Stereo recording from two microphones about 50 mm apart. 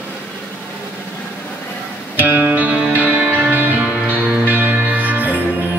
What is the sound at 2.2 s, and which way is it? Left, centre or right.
Music, right.